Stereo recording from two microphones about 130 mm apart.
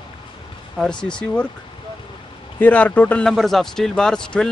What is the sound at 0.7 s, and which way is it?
Speech, 5° left (ahead or behind).